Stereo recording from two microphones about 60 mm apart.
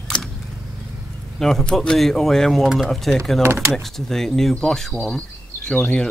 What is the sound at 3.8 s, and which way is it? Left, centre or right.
Speech, centre.